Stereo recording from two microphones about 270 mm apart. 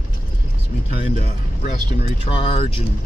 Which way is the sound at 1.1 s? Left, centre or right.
Left.